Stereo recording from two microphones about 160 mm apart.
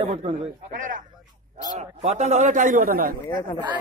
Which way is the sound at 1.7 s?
45° right (ahead or behind).